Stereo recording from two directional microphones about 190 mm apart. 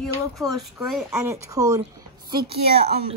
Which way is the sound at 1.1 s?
15° right (ahead or behind).